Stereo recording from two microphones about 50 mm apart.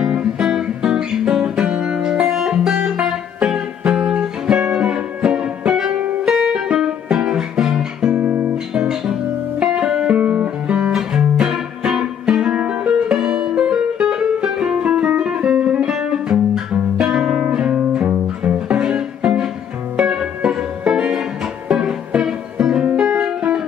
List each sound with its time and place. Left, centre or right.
0.0 s guitar: centre
5.9 s music: right
6.2 s music: centre
8.3 s music: right
8.7 s music: centre
10.9 s music: centre